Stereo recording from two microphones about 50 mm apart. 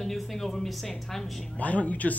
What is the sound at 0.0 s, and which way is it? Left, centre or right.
A woman's voice, centre.